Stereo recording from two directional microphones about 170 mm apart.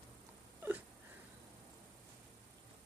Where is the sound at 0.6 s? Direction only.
10° right (ahead or behind).